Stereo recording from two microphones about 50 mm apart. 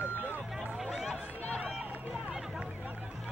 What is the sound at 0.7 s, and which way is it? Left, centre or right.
Music, centre.